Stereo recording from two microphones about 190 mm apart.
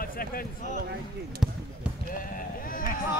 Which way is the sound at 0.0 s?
50° left (ahead or behind).